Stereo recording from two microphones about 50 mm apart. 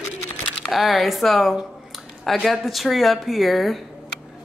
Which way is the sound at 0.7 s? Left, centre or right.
Centre.